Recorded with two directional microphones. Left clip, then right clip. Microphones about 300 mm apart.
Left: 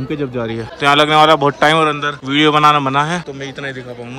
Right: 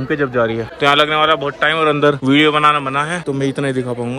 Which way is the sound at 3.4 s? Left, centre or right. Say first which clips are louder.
Right 6 dB; centre.